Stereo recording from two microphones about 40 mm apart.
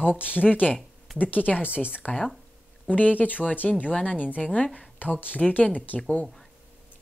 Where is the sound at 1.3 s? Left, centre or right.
Left.